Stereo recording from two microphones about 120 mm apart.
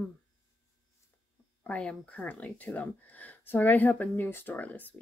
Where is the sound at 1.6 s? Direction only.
10° left (ahead or behind).